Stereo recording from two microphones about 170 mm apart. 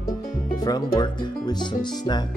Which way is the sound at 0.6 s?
25° left (ahead or behind).